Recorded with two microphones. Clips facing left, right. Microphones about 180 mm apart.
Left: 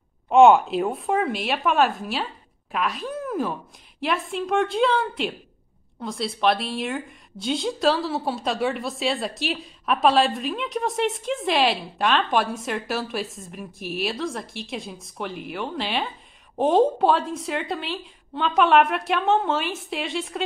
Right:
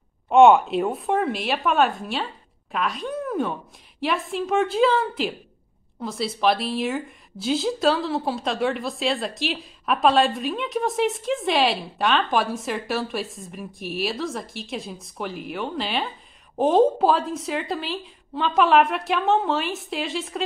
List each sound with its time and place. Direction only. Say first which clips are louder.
0.3 s a woman's voice: even; centre (ahead or behind)